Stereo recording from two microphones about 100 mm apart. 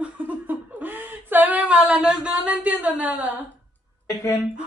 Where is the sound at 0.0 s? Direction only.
15° right (ahead or behind).